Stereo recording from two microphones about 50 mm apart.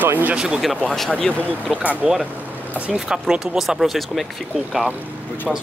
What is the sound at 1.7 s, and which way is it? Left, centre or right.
Speech, right.